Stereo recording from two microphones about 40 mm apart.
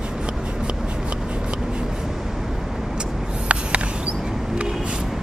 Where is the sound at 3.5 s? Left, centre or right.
Right.